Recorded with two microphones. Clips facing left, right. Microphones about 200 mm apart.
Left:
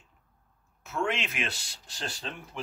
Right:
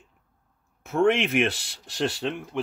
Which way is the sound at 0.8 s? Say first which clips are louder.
Right 10 dB; 55° right (ahead or behind).